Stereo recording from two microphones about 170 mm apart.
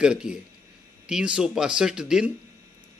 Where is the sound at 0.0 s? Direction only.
5° right (ahead or behind).